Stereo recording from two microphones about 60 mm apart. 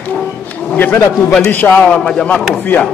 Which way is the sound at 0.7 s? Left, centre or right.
Left.